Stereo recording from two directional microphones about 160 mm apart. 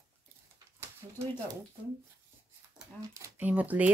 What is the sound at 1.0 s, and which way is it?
Speech, 25° right (ahead or behind).